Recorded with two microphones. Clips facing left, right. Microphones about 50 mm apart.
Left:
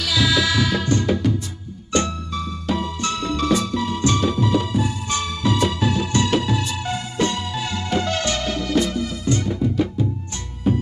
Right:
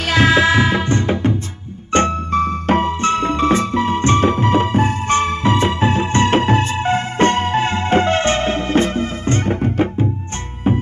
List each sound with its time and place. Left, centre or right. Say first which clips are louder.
0.0 s music: right 6 dB; right